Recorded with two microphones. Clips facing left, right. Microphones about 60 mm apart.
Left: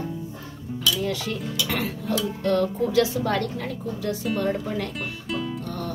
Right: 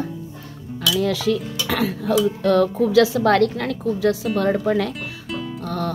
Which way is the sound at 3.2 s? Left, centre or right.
Right.